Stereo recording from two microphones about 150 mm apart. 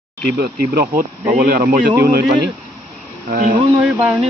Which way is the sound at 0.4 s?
90° right.